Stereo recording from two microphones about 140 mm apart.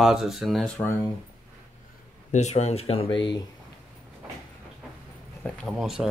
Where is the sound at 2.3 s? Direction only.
55° left (ahead or behind).